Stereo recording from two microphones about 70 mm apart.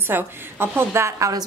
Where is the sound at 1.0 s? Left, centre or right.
Right.